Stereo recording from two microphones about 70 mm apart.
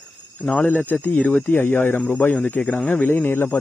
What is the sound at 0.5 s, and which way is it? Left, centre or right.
Speech, left.